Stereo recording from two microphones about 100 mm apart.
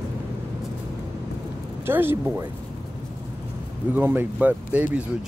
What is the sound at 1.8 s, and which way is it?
Speech, 20° right (ahead or behind).